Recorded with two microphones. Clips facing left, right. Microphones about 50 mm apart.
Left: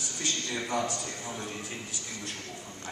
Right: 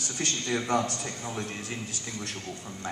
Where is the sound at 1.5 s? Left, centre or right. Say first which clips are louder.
Right 2 dB; right.